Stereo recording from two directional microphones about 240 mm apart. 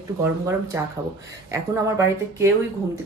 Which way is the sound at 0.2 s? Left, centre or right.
Centre.